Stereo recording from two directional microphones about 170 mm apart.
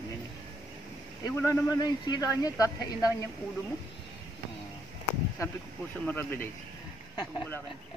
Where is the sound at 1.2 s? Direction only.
20° left (ahead or behind).